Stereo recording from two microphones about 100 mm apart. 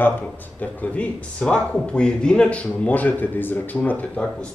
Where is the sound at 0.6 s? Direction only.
10° left (ahead or behind).